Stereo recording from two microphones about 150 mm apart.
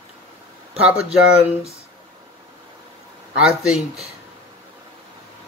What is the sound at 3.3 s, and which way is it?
Speech, 5° right (ahead or behind).